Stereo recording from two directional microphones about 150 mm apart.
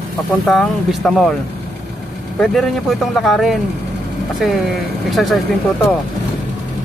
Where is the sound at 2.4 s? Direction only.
Centre (ahead or behind).